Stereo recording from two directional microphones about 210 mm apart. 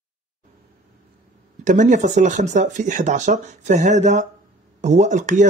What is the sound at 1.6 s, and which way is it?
Speech, 35° right (ahead or behind).